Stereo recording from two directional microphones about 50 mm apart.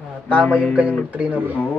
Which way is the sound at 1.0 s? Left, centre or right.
Right.